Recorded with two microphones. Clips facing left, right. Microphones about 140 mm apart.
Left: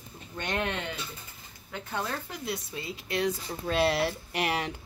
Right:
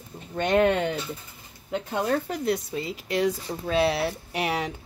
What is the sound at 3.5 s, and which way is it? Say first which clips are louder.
Speech: right 4 dB; 15° right (ahead or behind).